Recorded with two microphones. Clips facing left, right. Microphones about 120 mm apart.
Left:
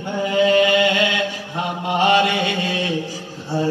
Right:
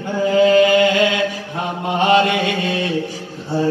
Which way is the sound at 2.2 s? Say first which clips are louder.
Right 2 dB; 25° left (ahead or behind).